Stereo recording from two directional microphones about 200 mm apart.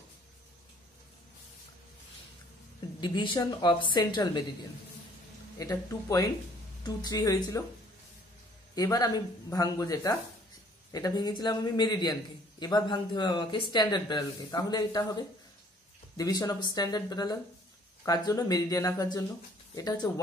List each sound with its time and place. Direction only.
3.0 s a man's voice: 20° left (ahead or behind)
5.6 s a man's voice: 15° left (ahead or behind)
8.7 s a man's voice: 15° left (ahead or behind)
16.2 s a man's voice: 20° left (ahead or behind)